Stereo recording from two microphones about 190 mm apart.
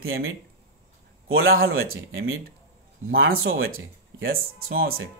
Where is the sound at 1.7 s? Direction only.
90° right.